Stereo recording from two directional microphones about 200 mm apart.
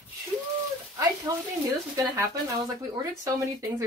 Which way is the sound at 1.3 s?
15° right (ahead or behind).